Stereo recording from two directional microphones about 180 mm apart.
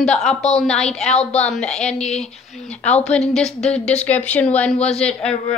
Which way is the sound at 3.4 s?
35° left (ahead or behind).